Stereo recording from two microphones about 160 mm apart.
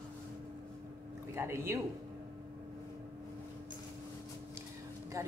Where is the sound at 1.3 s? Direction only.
15° right (ahead or behind).